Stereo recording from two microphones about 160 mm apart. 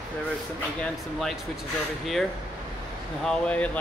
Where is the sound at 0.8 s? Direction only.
Centre (ahead or behind).